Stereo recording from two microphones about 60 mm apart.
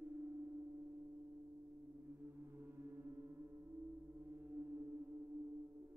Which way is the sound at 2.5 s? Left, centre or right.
Right.